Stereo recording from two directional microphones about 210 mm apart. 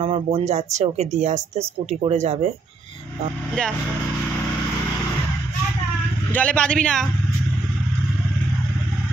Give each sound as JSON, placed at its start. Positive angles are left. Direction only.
{"t": 0.0, "sound": "speech", "side_deg": -25}
{"t": 6.3, "sound": "a man's voice", "side_deg": 5}